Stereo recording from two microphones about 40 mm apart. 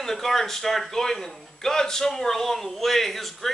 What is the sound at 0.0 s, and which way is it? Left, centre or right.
A man's voice, centre.